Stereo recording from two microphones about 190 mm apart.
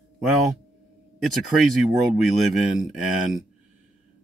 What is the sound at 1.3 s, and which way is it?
Speech, centre (ahead or behind).